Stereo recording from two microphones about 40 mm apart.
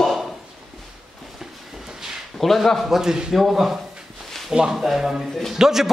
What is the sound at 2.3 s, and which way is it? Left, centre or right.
Speech, centre.